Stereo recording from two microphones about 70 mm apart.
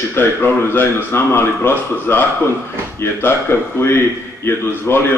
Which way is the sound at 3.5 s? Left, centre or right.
Left.